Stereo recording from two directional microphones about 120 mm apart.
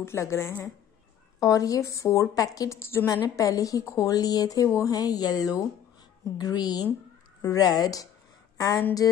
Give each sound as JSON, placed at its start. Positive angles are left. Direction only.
{"t": 0.0, "sound": "a woman's voice", "side_deg": 25}
{"t": 1.4, "sound": "a woman's voice", "side_deg": 30}